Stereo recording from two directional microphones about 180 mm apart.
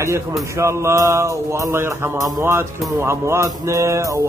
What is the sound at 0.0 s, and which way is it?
Speech, 15° right (ahead or behind).